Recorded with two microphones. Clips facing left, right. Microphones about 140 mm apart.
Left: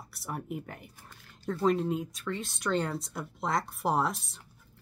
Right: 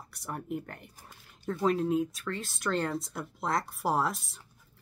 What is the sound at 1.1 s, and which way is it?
Speech, 10° right (ahead or behind).